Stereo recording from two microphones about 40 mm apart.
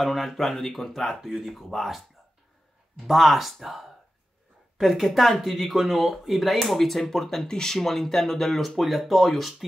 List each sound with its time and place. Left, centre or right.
0.0 s speech: centre
3.1 s speech: centre
7.7 s speech: centre